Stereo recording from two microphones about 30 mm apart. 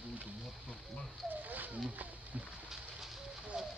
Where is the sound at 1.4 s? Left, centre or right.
Right.